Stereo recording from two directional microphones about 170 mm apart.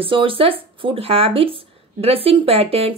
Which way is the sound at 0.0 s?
30° right (ahead or behind).